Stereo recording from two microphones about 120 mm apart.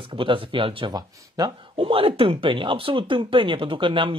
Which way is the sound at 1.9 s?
50° right (ahead or behind).